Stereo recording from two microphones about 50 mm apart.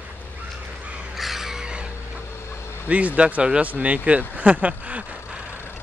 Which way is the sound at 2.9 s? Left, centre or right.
Right.